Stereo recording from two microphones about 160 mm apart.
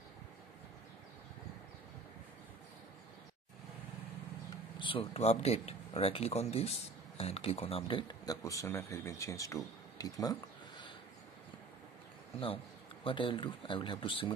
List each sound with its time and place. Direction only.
4.7 s speech: 30° left (ahead or behind)
13.0 s speech: 30° left (ahead or behind)